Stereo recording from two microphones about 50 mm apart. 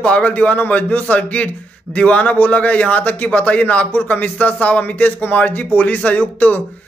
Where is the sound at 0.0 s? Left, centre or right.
Left.